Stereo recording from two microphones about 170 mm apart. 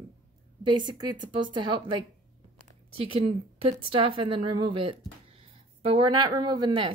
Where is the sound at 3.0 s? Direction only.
35° right (ahead or behind).